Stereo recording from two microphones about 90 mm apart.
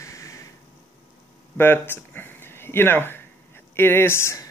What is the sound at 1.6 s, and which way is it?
Speech, 25° left (ahead or behind).